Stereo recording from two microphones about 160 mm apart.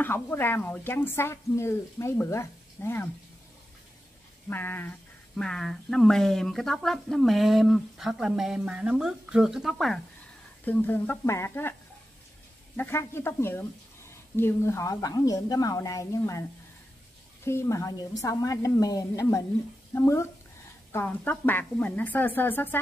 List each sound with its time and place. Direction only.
0.0 s speech: 15° left (ahead or behind)
4.5 s a woman's voice: 10° left (ahead or behind)
10.6 s speech: 10° left (ahead or behind)
12.7 s speech: 15° left (ahead or behind)
17.5 s speech: 20° left (ahead or behind)